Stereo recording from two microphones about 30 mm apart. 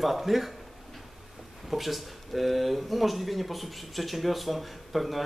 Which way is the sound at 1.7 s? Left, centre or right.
Centre.